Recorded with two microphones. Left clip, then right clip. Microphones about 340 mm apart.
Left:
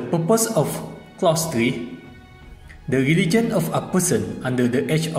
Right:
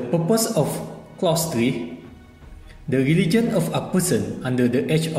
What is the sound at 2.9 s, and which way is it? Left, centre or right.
A man's voice, centre.